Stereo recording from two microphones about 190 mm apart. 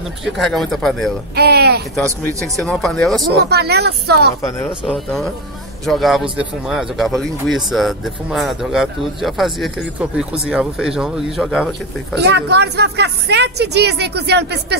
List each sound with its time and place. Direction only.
0.2 s speech: centre (ahead or behind)
1.3 s a woman's voice: 60° right (ahead or behind)
2.5 s speech: centre (ahead or behind)
3.3 s a woman's voice: 60° right (ahead or behind)
4.4 s speech: 15° left (ahead or behind)
4.9 s speech: centre (ahead or behind)
12.2 s a woman's voice: 65° right (ahead or behind)